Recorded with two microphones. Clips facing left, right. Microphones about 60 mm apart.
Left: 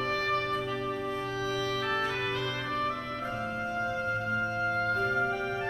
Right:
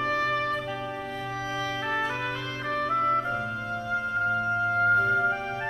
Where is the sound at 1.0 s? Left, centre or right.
Right.